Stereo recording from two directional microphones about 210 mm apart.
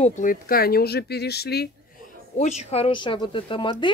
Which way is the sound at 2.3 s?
30° left (ahead or behind).